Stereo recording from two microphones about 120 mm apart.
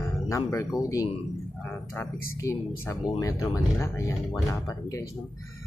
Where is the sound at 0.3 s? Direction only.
25° left (ahead or behind).